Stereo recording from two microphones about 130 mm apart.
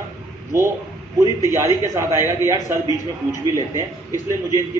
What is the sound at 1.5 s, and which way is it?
A man's voice, 20° right (ahead or behind).